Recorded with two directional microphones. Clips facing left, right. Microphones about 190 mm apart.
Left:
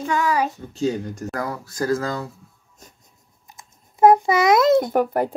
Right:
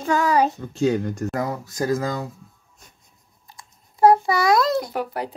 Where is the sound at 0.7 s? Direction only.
60° right (ahead or behind).